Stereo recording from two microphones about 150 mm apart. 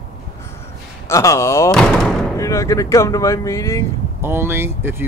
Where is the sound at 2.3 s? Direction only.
20° left (ahead or behind).